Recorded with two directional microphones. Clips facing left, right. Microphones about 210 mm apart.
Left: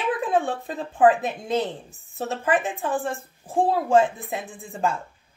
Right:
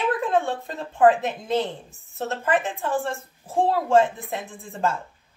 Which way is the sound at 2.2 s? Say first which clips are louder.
Even; 15° left (ahead or behind).